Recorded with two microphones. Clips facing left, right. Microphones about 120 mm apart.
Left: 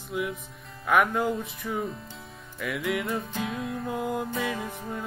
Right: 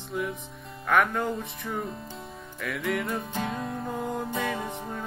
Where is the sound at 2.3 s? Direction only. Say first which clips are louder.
Left 3 dB; centre (ahead or behind).